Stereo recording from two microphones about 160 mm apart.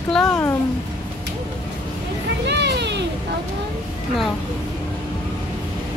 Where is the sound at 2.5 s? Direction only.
90° right.